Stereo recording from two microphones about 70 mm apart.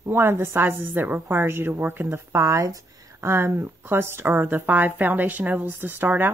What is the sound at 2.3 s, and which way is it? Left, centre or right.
Speech, right.